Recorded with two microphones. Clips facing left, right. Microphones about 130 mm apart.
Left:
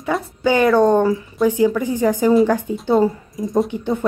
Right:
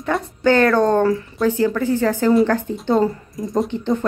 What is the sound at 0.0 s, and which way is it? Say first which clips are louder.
A woman's voice: right 1 dB; 10° left (ahead or behind).